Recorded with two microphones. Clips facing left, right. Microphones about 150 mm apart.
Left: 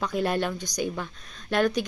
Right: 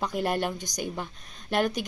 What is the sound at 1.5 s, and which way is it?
Speech, 15° right (ahead or behind).